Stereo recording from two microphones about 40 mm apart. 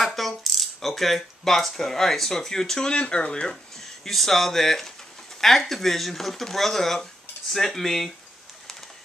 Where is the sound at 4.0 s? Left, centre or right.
Centre.